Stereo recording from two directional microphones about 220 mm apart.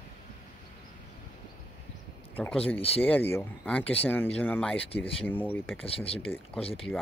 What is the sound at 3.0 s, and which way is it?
Speech, 10° left (ahead or behind).